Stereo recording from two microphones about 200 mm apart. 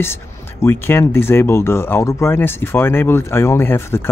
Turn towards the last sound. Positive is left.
turn(degrees=10)  # may be behind; listen again after turning